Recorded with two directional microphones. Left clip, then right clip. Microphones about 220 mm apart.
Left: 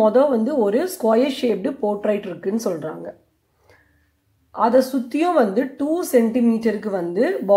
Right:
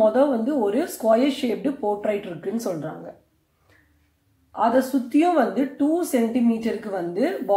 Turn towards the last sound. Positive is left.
turn(degrees=35)  # may be behind; listen again after turning